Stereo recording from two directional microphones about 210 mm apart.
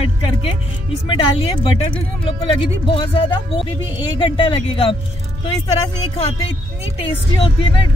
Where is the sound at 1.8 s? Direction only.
25° left (ahead or behind).